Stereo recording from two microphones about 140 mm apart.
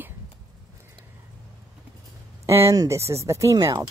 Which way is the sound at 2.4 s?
20° right (ahead or behind).